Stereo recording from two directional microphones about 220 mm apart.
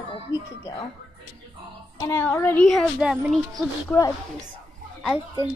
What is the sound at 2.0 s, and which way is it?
Speech, 10° left (ahead or behind).